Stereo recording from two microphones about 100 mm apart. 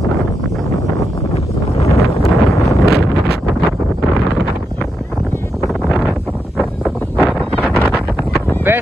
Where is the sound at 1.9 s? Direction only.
30° left (ahead or behind).